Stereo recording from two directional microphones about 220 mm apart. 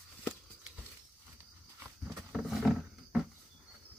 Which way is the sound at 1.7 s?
Centre (ahead or behind).